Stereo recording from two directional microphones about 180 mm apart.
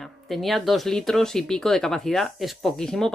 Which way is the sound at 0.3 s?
Centre (ahead or behind).